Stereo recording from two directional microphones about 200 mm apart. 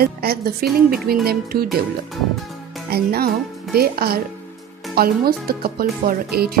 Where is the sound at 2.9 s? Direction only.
50° right (ahead or behind).